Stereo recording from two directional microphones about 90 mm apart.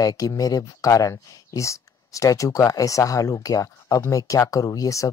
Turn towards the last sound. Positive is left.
turn(degrees=40)  # may be behind; listen again after turning